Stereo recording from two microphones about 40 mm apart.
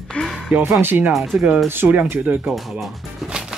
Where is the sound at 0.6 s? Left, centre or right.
Right.